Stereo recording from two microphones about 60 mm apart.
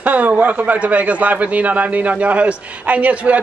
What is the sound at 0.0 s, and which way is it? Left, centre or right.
A man's voice, right.